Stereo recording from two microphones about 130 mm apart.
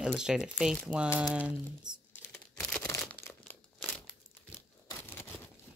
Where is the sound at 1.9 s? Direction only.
35° right (ahead or behind).